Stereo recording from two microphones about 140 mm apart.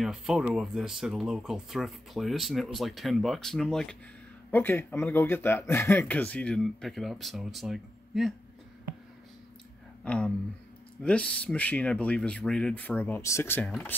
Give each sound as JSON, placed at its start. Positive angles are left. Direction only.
{"t": 0.0, "sound": "speech", "side_deg": 0}
{"t": 10.0, "sound": "speech", "side_deg": 10}